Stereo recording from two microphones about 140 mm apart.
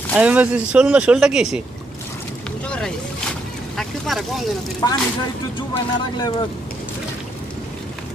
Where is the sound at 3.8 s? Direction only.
Centre (ahead or behind).